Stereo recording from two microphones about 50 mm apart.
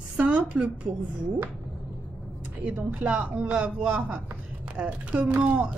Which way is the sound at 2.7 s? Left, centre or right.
Right.